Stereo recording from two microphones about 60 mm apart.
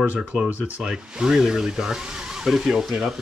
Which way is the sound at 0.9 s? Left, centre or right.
Centre.